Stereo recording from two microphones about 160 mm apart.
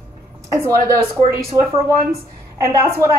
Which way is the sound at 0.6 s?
20° right (ahead or behind).